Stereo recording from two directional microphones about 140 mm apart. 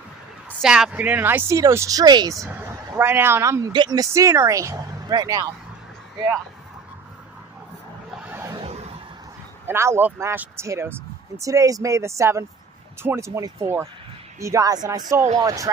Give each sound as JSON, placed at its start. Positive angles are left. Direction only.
{"t": 0.6, "sound": "speech", "side_deg": -5}
{"t": 3.0, "sound": "speech", "side_deg": -15}
{"t": 9.7, "sound": "speech", "side_deg": -15}